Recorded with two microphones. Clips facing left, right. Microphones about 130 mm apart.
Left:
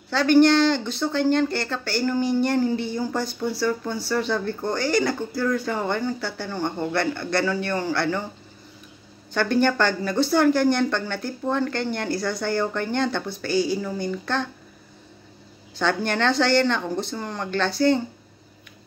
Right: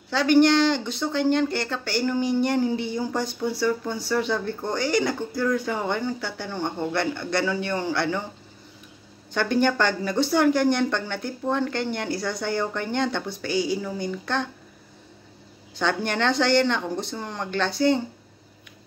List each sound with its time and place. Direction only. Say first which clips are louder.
0.1 s speech: left 1 dB; 15° right (ahead or behind)
9.3 s speech: left 1 dB; 15° right (ahead or behind)
15.8 s speech: left 1 dB; 15° right (ahead or behind)